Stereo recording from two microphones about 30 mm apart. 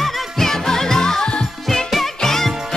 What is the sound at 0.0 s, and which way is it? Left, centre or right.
Music, centre.